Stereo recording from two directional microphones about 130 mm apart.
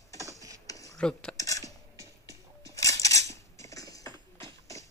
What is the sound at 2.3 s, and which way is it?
Scissors, 25° left (ahead or behind).